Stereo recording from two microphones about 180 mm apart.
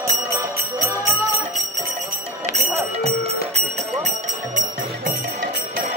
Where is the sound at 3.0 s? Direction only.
35° right (ahead or behind).